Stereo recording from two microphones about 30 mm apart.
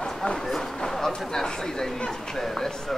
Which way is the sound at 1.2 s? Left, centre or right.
Centre.